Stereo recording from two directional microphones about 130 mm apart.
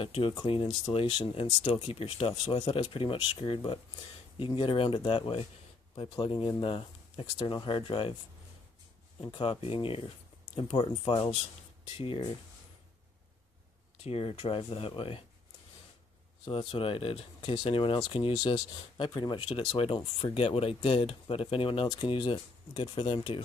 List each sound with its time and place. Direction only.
0.0 s speech: 45° left (ahead or behind)
9.2 s speech: 45° left (ahead or behind)
14.0 s speech: 45° left (ahead or behind)
16.4 s speech: 45° left (ahead or behind)
18.3 s speech: 30° left (ahead or behind)